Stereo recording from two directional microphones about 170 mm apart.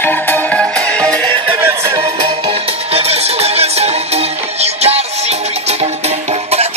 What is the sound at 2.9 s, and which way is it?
Music, 35° right (ahead or behind).